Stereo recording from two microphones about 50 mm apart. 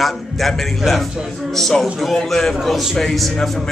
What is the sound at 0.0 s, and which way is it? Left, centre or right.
A man's voice, centre.